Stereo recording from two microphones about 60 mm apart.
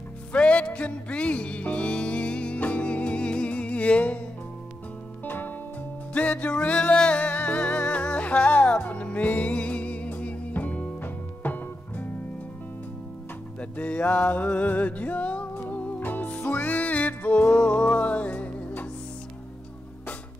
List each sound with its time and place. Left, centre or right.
0.3 s music: left
5.2 s music: left
6.1 s music: left
13.6 s music: left